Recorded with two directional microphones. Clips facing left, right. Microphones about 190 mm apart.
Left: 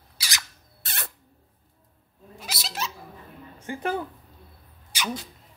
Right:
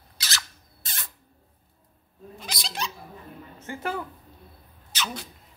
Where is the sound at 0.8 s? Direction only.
65° left (ahead or behind).